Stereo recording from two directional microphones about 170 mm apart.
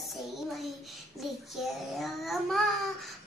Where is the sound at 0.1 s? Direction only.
Centre (ahead or behind).